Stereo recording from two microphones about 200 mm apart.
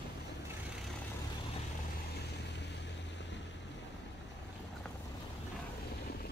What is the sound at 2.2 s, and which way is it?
Vehicle, 60° left (ahead or behind).